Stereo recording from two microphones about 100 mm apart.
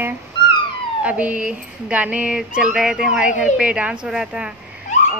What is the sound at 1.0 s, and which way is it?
Speech, 15° right (ahead or behind).